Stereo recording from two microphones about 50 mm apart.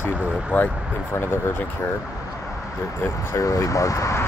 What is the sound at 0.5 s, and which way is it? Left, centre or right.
Speech, left.